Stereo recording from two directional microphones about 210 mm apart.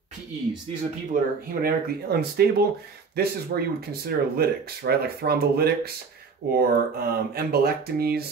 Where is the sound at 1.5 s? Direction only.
45° right (ahead or behind).